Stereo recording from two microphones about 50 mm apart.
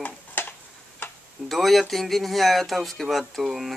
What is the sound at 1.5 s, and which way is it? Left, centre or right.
Speech, centre.